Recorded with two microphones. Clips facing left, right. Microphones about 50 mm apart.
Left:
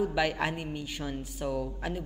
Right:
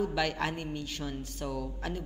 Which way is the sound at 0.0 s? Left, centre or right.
Centre.